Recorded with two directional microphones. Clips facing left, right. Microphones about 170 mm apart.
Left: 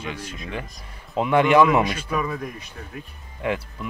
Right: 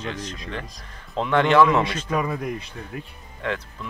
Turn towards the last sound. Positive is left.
turn(degrees=10)  # may be behind; listen again after turning